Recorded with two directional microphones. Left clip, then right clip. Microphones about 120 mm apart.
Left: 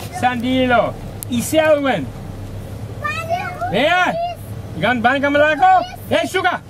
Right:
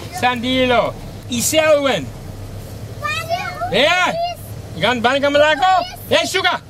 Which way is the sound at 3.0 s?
35° right (ahead or behind).